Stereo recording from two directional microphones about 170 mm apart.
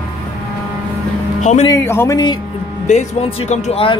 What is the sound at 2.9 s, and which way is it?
Speech, 40° left (ahead or behind).